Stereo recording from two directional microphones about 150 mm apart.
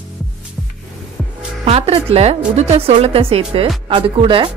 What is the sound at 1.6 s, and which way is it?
A woman's voice, 40° right (ahead or behind).